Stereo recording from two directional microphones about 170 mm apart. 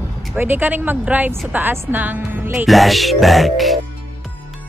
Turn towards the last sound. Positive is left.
turn(degrees=0)  # may be behind; listen again after turning